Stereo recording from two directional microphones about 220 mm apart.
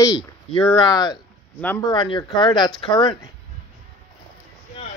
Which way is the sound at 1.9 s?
20° left (ahead or behind).